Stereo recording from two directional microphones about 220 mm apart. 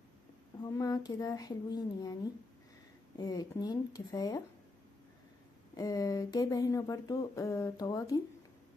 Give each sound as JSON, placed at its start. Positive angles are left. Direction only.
{"t": 0.6, "sound": "speech", "side_deg": 15}
{"t": 3.2, "sound": "speech", "side_deg": 15}
{"t": 5.8, "sound": "speech", "side_deg": 15}